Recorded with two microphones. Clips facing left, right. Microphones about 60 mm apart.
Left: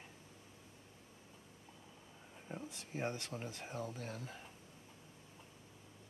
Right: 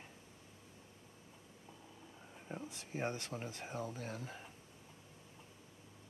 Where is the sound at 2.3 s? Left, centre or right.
Centre.